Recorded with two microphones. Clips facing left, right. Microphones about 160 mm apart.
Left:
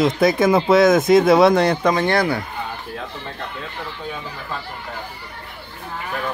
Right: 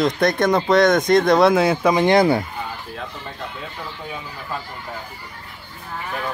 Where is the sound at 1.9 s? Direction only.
20° right (ahead or behind).